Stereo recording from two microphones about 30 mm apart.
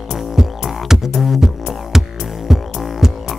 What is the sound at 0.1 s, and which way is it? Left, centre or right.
Music, centre.